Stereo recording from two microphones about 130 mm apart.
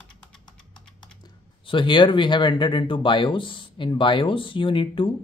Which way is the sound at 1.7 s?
40° left (ahead or behind).